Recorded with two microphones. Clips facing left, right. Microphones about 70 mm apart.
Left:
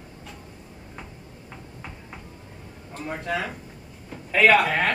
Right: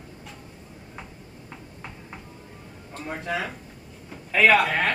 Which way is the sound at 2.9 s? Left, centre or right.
Centre.